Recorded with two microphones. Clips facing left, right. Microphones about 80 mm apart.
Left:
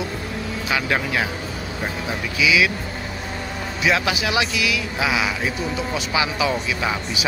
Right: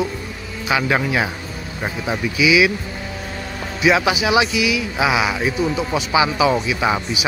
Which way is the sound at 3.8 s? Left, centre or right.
Centre.